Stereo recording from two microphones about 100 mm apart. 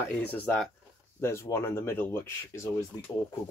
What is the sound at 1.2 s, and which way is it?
Speech, 25° left (ahead or behind).